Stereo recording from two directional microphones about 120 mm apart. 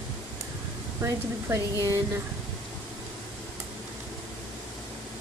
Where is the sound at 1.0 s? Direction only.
25° right (ahead or behind).